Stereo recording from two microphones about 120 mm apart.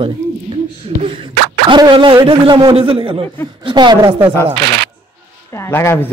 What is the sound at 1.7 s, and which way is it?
A man's voice, 40° right (ahead or behind).